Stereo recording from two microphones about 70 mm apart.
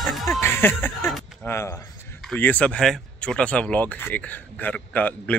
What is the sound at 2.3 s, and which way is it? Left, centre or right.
Speech, left.